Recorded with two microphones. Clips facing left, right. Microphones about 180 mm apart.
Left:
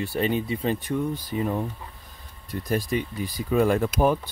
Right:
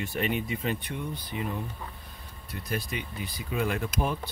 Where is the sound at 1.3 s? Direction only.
45° left (ahead or behind).